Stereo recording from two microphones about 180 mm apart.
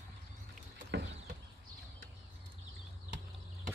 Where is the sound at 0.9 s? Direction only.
70° right (ahead or behind).